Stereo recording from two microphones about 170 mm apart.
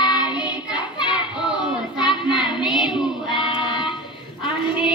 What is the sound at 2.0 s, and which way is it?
Child singing, 25° left (ahead or behind).